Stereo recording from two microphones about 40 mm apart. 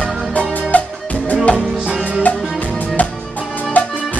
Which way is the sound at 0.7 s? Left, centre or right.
Left.